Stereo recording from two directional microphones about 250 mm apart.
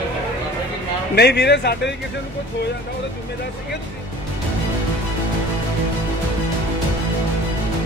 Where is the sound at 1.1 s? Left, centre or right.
Left.